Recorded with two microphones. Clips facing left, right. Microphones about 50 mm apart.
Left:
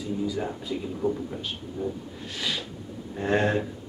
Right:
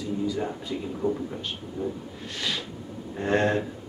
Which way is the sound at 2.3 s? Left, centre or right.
Centre.